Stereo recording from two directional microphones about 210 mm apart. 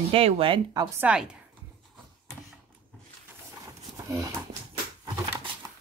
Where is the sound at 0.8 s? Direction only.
10° right (ahead or behind).